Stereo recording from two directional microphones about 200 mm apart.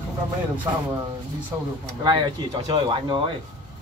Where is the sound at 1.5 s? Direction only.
10° right (ahead or behind).